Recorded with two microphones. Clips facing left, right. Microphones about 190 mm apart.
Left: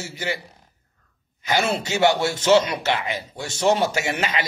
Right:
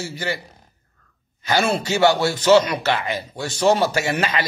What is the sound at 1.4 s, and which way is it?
A man's voice, 20° left (ahead or behind).